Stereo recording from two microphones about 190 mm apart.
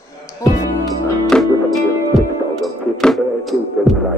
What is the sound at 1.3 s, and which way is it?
Music, 5° left (ahead or behind).